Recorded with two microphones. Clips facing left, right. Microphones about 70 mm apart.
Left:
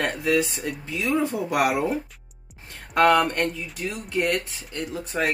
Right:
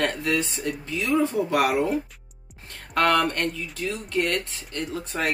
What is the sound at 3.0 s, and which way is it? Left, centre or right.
Speech, centre.